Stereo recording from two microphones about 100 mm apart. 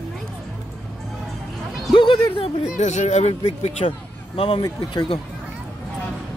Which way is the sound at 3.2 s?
85° left.